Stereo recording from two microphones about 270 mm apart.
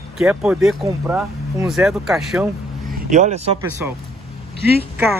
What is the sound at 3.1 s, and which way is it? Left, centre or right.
Speech, right.